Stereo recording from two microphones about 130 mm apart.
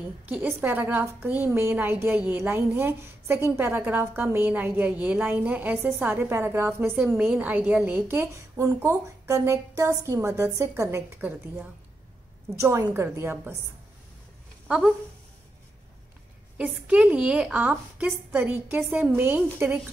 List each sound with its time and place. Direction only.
0.0 s a woman's voice: 10° right (ahead or behind)
7.0 s a woman's voice: 5° right (ahead or behind)
16.5 s a woman's voice: 10° right (ahead or behind)